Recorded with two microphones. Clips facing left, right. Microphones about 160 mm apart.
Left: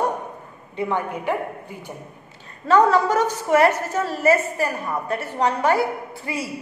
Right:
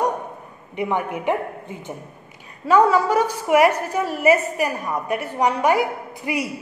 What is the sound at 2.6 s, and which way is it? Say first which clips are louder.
A woman's voice: even; 10° right (ahead or behind).